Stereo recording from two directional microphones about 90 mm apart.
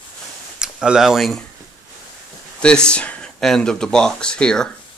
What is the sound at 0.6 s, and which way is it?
Speech, 10° right (ahead or behind).